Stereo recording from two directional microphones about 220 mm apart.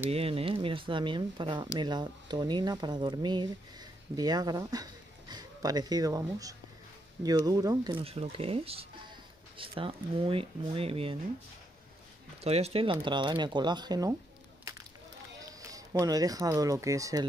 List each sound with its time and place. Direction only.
0.1 s speech: 25° right (ahead or behind)
12.4 s speech: 30° right (ahead or behind)
15.7 s speech: 15° right (ahead or behind)